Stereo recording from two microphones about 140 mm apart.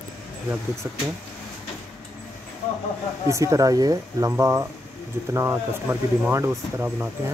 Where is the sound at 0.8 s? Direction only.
20° right (ahead or behind).